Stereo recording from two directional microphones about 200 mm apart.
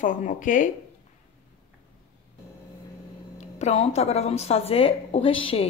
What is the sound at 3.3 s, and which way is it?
Speech, 35° left (ahead or behind).